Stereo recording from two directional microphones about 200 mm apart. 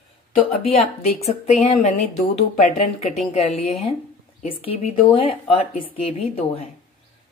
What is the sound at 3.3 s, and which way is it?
A woman's voice, 30° left (ahead or behind).